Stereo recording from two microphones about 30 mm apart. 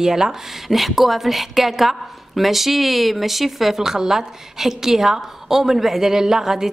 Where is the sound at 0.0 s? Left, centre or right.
Centre.